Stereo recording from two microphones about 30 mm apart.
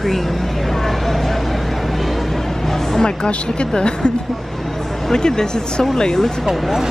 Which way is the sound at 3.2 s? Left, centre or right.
Left.